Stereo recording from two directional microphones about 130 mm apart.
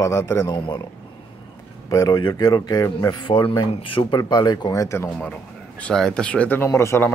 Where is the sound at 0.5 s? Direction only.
35° left (ahead or behind).